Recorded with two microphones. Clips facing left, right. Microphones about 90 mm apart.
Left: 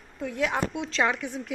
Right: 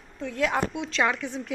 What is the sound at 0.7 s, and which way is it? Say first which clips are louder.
Speech: even; 35° left (ahead or behind).